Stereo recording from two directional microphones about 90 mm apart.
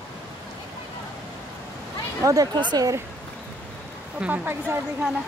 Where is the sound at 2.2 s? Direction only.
40° right (ahead or behind).